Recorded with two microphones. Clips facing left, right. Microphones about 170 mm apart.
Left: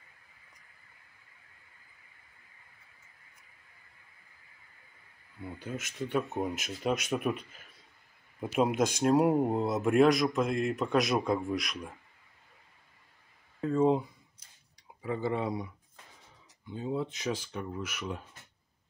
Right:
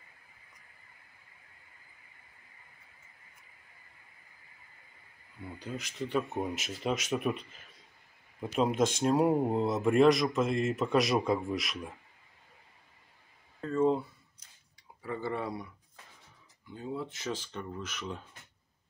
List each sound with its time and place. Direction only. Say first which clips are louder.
6.3 s speech: left 1 dB; centre (ahead or behind)
13.6 s speech: left 2 dB; 10° left (ahead or behind)